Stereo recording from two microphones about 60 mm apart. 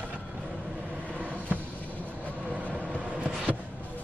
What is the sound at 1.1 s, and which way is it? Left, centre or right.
Vehicle, right.